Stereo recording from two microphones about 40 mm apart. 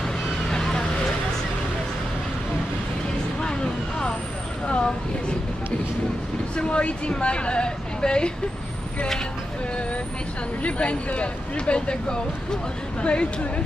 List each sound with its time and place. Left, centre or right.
0.5 s vehicle: centre
4.6 s a sound: left
6.5 s a woman's voice: left
10.6 s speech: left